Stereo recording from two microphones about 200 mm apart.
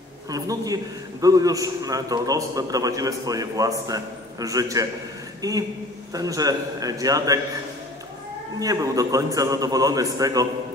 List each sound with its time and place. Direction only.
0.3 s a man's voice: 20° right (ahead or behind)
8.5 s a man's voice: 15° right (ahead or behind)